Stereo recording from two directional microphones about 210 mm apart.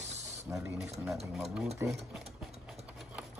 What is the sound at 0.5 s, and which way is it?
Speech, 15° right (ahead or behind).